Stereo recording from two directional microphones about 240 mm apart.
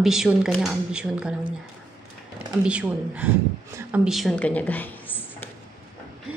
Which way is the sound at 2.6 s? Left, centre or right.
Centre.